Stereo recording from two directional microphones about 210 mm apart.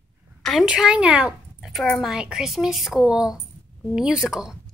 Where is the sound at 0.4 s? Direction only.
Centre (ahead or behind).